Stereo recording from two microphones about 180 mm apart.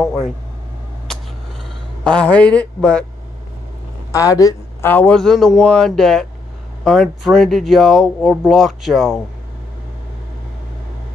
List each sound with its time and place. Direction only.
2.0 s speech: 5° left (ahead or behind)
4.1 s speech: 20° left (ahead or behind)
4.9 s speech: 5° left (ahead or behind)